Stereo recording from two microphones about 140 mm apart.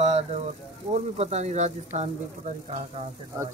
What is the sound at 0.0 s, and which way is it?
Speech, 55° right (ahead or behind).